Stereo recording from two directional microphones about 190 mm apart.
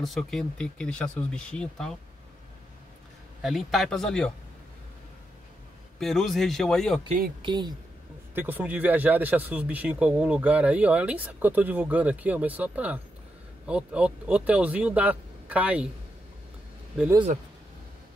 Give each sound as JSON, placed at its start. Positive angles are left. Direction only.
{"t": 0.0, "sound": "speech", "side_deg": 0}
{"t": 3.4, "sound": "speech", "side_deg": 0}
{"t": 5.9, "sound": "speech", "side_deg": 0}
{"t": 7.4, "sound": "speech", "side_deg": -25}
{"t": 8.4, "sound": "speech", "side_deg": -10}